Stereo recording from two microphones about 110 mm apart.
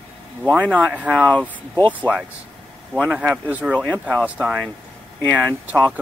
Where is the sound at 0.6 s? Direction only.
10° right (ahead or behind).